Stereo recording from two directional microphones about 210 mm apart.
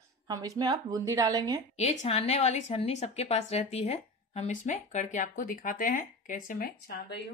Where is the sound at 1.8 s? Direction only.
30° left (ahead or behind); by 7.1 s 45° left (ahead or behind).